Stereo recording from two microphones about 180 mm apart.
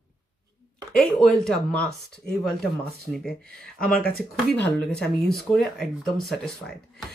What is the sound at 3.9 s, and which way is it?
Speech, 55° left (ahead or behind).